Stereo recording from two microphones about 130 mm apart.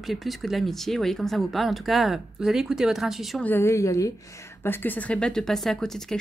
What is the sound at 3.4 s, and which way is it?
A woman's voice, 15° left (ahead or behind).